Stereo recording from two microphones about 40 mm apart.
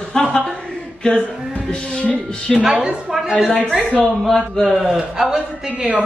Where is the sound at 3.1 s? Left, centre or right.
Centre.